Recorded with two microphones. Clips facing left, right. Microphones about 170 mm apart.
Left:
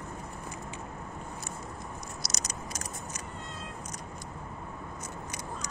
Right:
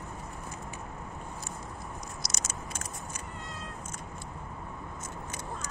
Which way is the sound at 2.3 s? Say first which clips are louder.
Left 1 dB; 40° left (ahead or behind).